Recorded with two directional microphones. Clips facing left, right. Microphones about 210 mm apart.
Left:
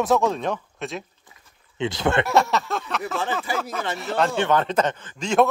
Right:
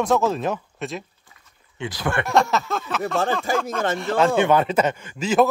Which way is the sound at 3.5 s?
45° right (ahead or behind).